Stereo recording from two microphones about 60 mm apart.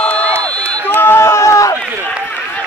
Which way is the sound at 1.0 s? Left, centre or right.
Left.